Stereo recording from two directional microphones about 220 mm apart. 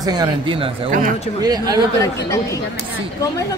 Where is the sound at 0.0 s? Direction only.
20° right (ahead or behind).